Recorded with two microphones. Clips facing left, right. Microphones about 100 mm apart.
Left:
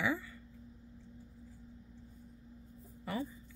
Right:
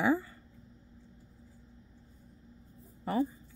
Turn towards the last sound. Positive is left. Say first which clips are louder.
# right 8 dB
turn(degrees=-40)  # may be behind; listen again after turning